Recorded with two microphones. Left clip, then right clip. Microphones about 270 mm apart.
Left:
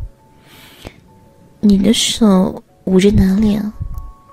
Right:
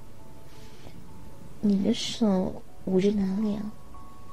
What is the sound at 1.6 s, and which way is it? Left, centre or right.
A woman's voice, left.